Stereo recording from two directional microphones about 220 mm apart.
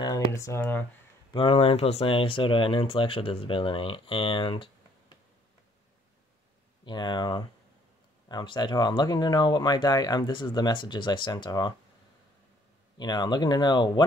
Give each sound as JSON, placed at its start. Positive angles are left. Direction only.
{"t": 0.0, "sound": "speech", "side_deg": 15}
{"t": 1.3, "sound": "speech", "side_deg": 25}
{"t": 6.8, "sound": "speech", "side_deg": 20}
{"t": 12.9, "sound": "speech", "side_deg": 20}